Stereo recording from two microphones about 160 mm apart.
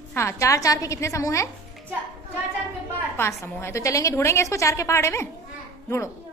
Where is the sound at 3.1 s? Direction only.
15° left (ahead or behind).